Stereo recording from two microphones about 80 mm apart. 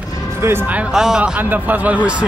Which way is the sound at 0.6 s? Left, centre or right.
Centre.